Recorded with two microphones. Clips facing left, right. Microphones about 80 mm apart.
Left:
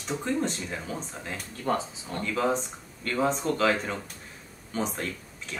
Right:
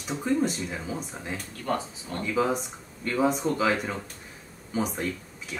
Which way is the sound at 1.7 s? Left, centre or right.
Left.